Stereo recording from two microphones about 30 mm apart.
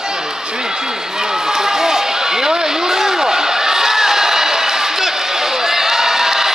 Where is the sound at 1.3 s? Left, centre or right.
Centre.